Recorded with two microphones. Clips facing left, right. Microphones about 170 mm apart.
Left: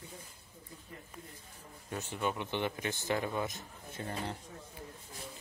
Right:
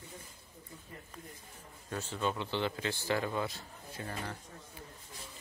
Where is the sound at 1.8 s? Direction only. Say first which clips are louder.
Right 1 dB; 15° left (ahead or behind).